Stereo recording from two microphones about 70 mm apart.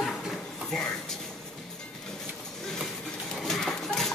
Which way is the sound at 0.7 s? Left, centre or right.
Centre.